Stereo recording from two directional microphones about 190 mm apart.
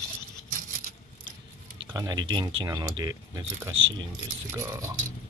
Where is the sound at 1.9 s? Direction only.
20° right (ahead or behind).